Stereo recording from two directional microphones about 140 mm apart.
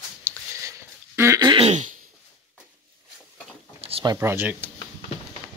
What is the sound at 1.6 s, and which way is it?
Throat clearing, 55° right (ahead or behind).